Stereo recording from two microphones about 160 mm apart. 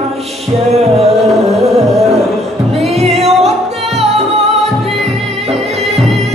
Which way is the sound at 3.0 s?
40° right (ahead or behind).